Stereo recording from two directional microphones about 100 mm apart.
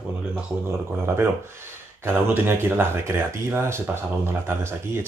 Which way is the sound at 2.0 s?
20° right (ahead or behind).